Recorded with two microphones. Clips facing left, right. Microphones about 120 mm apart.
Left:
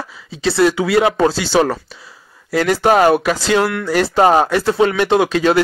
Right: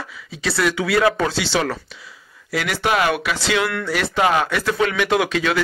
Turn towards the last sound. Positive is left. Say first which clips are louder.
# left 6 dB
turn(degrees=40)  # may be behind; listen again after turning